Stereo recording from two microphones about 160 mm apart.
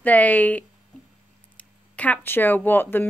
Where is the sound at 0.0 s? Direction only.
10° left (ahead or behind).